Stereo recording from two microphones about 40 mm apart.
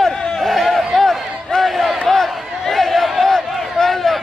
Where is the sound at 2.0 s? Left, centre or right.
Centre.